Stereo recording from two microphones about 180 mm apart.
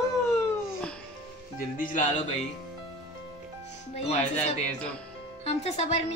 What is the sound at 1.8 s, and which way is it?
Speech, 45° left (ahead or behind).